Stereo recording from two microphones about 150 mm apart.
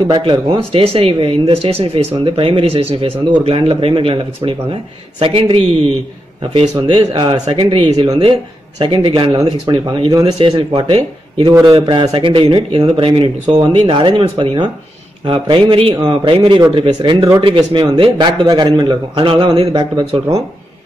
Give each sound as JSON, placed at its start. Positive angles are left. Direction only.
{"t": 0.1, "sound": "speech", "side_deg": -30}
{"t": 6.7, "sound": "speech", "side_deg": -30}